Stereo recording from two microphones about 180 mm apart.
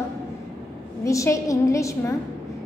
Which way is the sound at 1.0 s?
15° left (ahead or behind).